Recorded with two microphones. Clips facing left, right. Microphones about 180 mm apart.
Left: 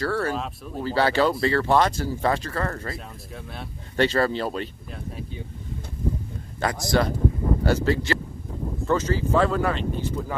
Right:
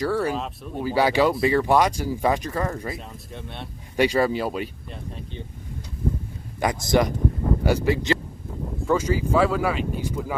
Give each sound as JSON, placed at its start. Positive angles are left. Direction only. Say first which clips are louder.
{"t": 0.0, "sound": "speech", "louder": "right 2 dB", "side_deg": -15}
{"t": 3.3, "sound": "speech", "louder": "right 1 dB", "side_deg": 0}
{"t": 3.9, "sound": "speech", "louder": "right 1 dB", "side_deg": -10}
{"t": 4.9, "sound": "speech", "louder": "left 1 dB", "side_deg": 5}
{"t": 6.6, "sound": "speech", "louder": "right 2 dB", "side_deg": -15}